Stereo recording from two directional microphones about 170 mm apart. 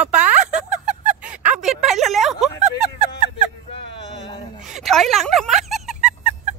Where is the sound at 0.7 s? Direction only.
45° right (ahead or behind).